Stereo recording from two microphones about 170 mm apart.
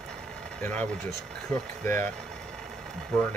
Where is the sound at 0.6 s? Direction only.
5° left (ahead or behind).